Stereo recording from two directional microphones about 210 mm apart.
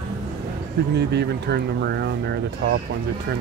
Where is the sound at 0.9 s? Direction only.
50° right (ahead or behind).